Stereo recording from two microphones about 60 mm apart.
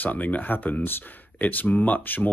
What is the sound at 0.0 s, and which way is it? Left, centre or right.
Speech, left.